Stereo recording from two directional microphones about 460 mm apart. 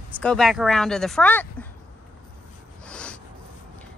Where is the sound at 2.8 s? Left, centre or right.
Centre.